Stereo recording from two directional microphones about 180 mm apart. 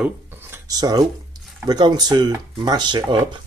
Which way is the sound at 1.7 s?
25° right (ahead or behind).